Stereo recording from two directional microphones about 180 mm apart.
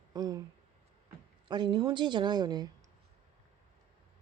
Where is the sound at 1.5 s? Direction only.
25° right (ahead or behind).